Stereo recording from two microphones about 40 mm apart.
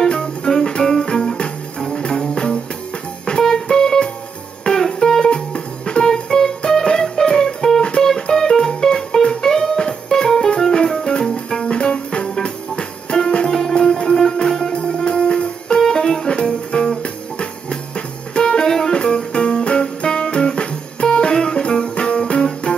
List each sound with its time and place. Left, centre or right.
0.0 s music: centre
5.3 s music: left
13.5 s music: centre
18.4 s music: centre